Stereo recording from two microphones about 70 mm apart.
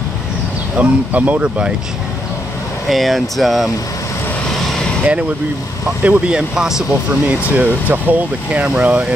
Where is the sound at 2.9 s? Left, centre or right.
Centre.